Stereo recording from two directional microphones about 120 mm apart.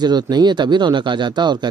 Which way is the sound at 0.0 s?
35° right (ahead or behind).